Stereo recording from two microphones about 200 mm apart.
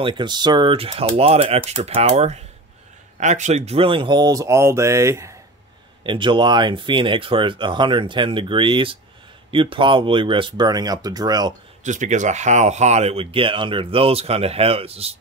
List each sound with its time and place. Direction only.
0.0 s speech: 25° right (ahead or behind)
6.0 s speech: 25° right (ahead or behind)
11.8 s speech: 40° right (ahead or behind)